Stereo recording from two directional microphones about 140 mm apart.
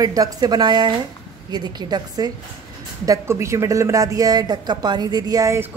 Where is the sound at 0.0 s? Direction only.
25° right (ahead or behind).